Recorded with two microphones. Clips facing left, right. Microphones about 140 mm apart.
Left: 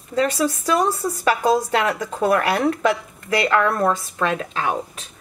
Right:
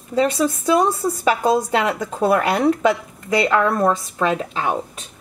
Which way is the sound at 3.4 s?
10° right (ahead or behind).